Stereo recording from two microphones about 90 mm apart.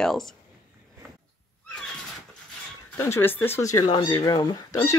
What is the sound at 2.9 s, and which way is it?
Speech, 25° left (ahead or behind).